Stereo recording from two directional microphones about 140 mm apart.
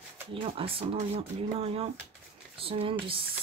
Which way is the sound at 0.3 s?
40° right (ahead or behind).